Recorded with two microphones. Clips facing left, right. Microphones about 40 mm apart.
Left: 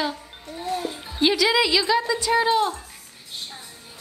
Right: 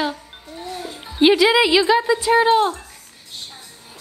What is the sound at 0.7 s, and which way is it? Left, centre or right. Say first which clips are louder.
Music: left 5 dB; centre.